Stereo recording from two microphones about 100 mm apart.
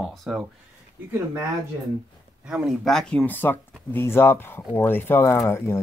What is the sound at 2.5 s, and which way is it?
Speech, 5° right (ahead or behind).